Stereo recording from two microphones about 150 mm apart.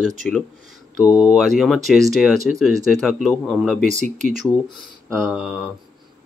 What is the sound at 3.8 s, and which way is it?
Speech, 55° right (ahead or behind).